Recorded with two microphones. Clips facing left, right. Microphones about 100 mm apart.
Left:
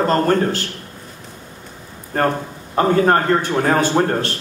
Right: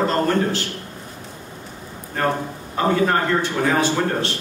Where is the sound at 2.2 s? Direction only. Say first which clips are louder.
Left 3 dB; 50° left (ahead or behind).